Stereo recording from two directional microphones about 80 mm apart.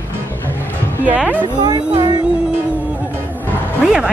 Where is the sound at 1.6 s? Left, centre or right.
Right.